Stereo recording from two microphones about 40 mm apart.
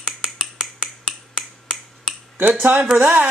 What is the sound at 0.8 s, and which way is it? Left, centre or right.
Finger snapping, centre.